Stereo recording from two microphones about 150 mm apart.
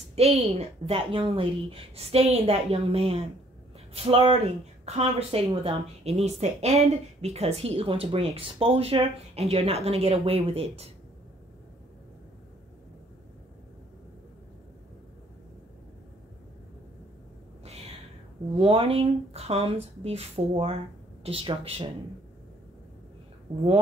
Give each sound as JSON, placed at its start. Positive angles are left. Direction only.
{"t": 0.1, "sound": "a woman's voice", "side_deg": -45}
{"t": 18.6, "sound": "a woman's voice", "side_deg": -40}